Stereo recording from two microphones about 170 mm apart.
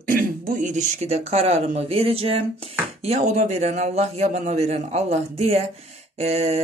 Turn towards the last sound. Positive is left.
turn(degrees=-40)  # may be behind; listen again after turning